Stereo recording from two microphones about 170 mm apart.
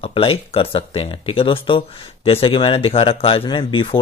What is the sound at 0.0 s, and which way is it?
Speech, 35° left (ahead or behind).